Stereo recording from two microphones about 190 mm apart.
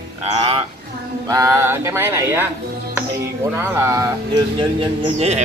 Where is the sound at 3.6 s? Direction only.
15° right (ahead or behind).